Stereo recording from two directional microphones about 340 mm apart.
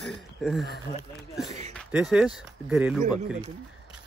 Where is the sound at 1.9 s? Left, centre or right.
Centre.